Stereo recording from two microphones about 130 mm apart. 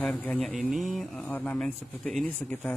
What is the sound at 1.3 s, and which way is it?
Speech, 10° left (ahead or behind).